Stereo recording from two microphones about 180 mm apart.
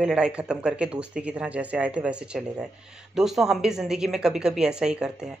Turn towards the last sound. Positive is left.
turn(degrees=-5)  # may be behind; listen again after turning